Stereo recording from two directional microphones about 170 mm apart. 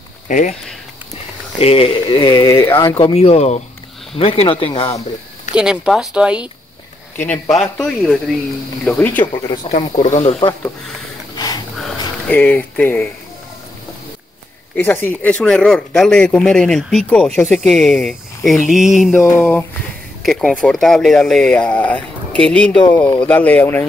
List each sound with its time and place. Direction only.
0.3 s speech: 50° left (ahead or behind)
1.6 s speech: 35° left (ahead or behind)
2.3 s speech: 15° left (ahead or behind)
3.0 s speech: 35° left (ahead or behind)
5.5 s speech: 5° right (ahead or behind)
7.6 s speech: 10° left (ahead or behind)
9.7 s speech: 45° left (ahead or behind)
11.3 s a sound: 25° left (ahead or behind)
11.8 s a sound: 10° left (ahead or behind)
14.8 s speech: 10° left (ahead or behind)
19.2 s speech: 10° left (ahead or behind)